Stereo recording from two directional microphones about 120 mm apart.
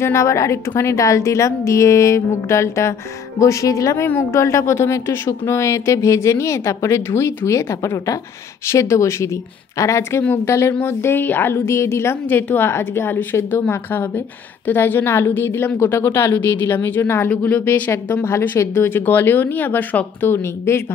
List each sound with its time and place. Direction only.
0.0 s a woman's voice: 25° left (ahead or behind)